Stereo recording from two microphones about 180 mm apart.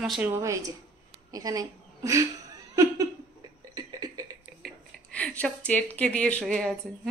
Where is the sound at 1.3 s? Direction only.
20° right (ahead or behind).